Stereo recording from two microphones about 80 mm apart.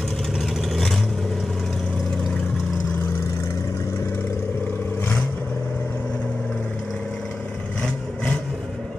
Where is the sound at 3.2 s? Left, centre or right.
Left; by 7.0 s centre.